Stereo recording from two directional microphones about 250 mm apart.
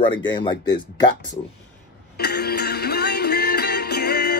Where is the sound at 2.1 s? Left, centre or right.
Left.